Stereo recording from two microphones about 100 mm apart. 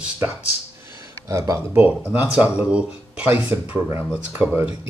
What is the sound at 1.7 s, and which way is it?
Speech, 15° right (ahead or behind).